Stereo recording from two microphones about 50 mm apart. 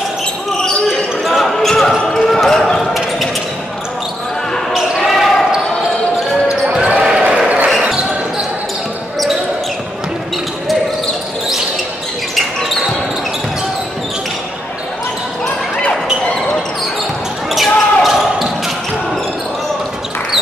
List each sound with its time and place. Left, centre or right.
0.8 s basketball bounce: centre
4.7 s basketball bounce: centre
6.4 s basketball bounce: centre
7.4 s basketball bounce: right
17.5 s basketball bounce: centre